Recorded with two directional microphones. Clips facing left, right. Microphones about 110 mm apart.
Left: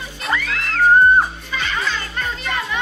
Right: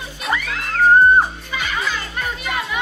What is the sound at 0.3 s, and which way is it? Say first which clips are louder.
Music: even; 15° right (ahead or behind).